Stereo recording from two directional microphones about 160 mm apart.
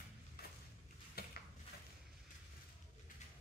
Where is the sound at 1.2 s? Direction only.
75° left (ahead or behind).